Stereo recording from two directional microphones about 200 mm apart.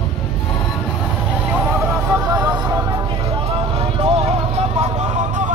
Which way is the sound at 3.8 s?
30° right (ahead or behind).